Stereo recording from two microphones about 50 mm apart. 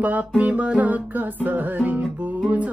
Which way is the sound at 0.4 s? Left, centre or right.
Right.